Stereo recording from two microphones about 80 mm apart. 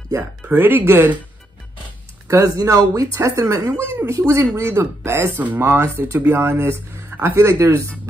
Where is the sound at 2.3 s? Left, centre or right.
Right.